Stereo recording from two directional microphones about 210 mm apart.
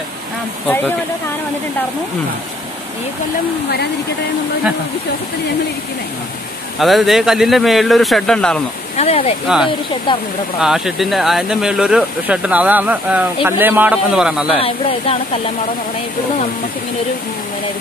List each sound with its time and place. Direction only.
0.7 s speech: 10° left (ahead or behind)
6.8 s speech: centre (ahead or behind)
8.9 s speech: 30° left (ahead or behind)
10.6 s speech: centre (ahead or behind)
14.6 s speech: 25° left (ahead or behind)